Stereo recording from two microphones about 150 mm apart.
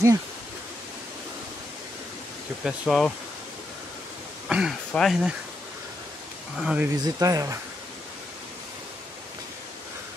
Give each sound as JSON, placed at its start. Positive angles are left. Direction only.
{"t": 2.6, "sound": "speech", "side_deg": 0}
{"t": 4.5, "sound": "speech", "side_deg": -5}
{"t": 6.6, "sound": "speech", "side_deg": -5}
{"t": 7.0, "sound": "speech", "side_deg": -25}